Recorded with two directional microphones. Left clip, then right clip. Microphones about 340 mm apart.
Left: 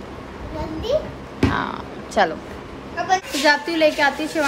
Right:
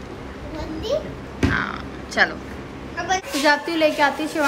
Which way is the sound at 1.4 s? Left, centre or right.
Centre.